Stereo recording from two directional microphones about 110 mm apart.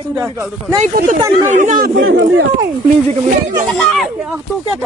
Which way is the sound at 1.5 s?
90° right.